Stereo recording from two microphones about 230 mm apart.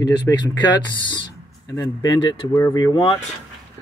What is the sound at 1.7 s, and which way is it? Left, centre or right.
Speech, centre.